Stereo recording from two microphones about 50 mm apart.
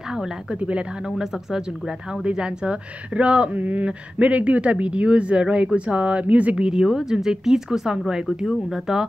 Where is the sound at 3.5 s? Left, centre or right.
Right.